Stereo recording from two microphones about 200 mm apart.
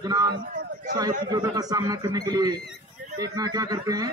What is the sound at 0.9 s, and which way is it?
Speech, 20° right (ahead or behind).